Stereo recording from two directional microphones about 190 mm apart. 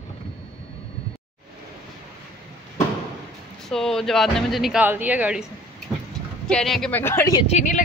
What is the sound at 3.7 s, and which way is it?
Speech, centre (ahead or behind).